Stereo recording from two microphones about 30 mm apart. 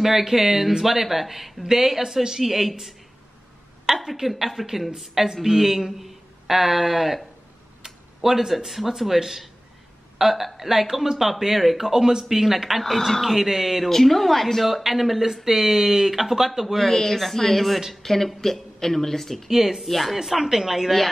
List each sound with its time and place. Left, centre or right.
0.0 s speech: centre
1.6 s speech: centre
2.4 s speech: centre
3.8 s a woman's voice: centre
11.9 s speech: centre
12.8 s speech: centre
13.8 s speech: centre
16.7 s speech: centre
19.5 s speech: centre
19.9 s speech: centre
20.4 s speech: centre